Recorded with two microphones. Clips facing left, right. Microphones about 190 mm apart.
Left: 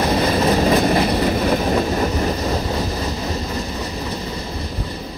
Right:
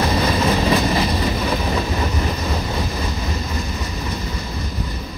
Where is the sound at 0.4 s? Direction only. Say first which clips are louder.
Left 3 dB; 40° left (ahead or behind); by 1.3 s 60° left (ahead or behind).